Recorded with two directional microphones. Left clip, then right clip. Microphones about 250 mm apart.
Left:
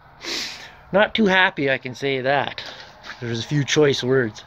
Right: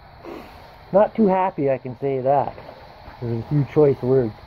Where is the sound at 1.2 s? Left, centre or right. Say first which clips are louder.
Left 1 dB; left.